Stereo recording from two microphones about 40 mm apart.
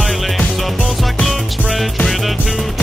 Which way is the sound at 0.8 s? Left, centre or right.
Left.